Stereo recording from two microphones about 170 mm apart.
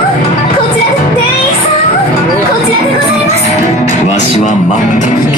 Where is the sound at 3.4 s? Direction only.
40° left (ahead or behind).